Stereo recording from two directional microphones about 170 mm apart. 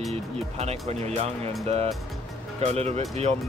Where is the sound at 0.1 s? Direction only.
40° right (ahead or behind).